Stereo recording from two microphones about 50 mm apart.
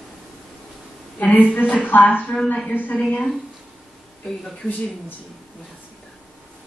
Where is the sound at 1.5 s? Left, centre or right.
Left.